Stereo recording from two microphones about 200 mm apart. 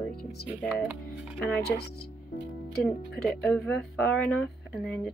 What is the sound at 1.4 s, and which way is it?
Speech, 55° left (ahead or behind).